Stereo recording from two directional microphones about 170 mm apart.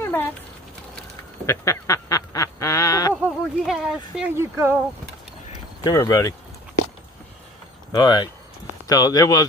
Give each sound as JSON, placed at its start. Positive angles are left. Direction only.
{"t": 1.4, "sound": "duck", "side_deg": 15}
{"t": 3.3, "sound": "a sound", "side_deg": 0}
{"t": 4.3, "sound": "speech", "side_deg": -15}
{"t": 5.9, "sound": "speech", "side_deg": 20}
{"t": 7.9, "sound": "speech", "side_deg": 25}